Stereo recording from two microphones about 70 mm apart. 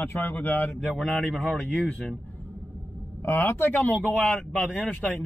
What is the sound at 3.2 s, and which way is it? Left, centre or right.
A man's voice, left.